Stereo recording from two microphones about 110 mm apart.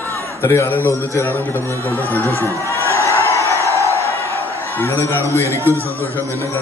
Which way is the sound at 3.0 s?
25° right (ahead or behind).